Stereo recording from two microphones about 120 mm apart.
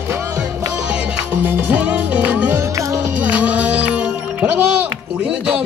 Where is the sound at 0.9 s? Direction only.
15° right (ahead or behind).